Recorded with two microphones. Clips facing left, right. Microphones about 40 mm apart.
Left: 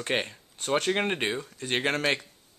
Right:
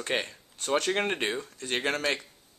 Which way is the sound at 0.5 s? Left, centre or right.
Centre.